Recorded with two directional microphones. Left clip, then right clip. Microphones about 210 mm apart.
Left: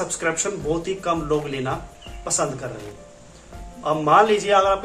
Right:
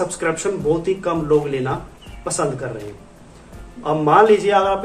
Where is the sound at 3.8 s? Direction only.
5° left (ahead or behind).